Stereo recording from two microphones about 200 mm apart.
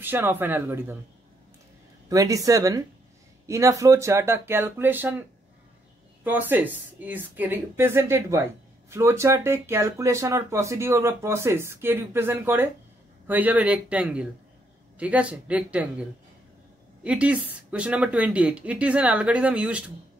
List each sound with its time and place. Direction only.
0.0 s speech: 10° right (ahead or behind)
2.0 s speech: 15° right (ahead or behind)
6.2 s speech: 10° right (ahead or behind)